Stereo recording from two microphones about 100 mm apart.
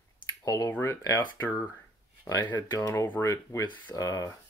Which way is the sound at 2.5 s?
45° left (ahead or behind).